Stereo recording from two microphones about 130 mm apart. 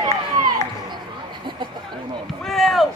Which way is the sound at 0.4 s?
90° right.